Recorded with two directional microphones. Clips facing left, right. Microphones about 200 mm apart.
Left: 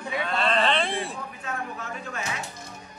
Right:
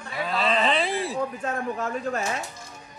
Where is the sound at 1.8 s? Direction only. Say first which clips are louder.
Right 7 dB; 40° right (ahead or behind).